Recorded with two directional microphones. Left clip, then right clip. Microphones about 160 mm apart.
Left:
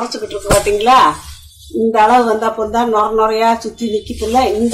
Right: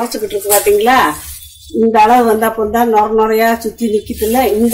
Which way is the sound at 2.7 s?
50° right (ahead or behind).